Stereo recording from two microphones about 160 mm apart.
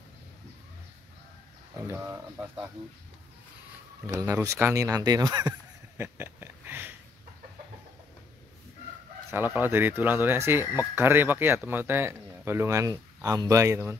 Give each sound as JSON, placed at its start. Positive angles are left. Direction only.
{"t": 1.9, "sound": "speech", "side_deg": -15}
{"t": 4.1, "sound": "speech", "side_deg": -20}
{"t": 5.9, "sound": "a sound", "side_deg": -15}
{"t": 9.3, "sound": "speech", "side_deg": -10}